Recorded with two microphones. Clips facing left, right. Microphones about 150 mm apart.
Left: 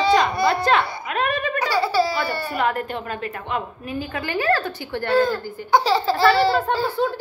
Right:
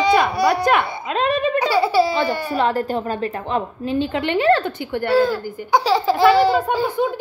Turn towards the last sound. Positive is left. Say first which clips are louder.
# right 2 dB
turn(degrees=-15)  # may be behind; listen again after turning